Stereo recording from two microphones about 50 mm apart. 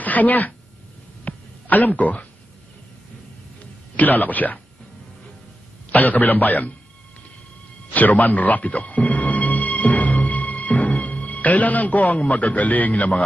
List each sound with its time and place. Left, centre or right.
0.0 s speech: left
1.2 s a sound: left
3.9 s speech: left
5.9 s speech: left
7.9 s music: left
11.2 s a man's voice: left